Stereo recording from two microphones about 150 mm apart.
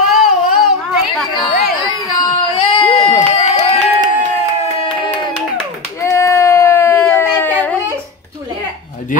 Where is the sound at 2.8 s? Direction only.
20° left (ahead or behind).